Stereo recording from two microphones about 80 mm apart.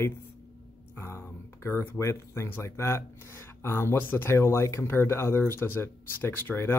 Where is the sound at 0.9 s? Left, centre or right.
Left.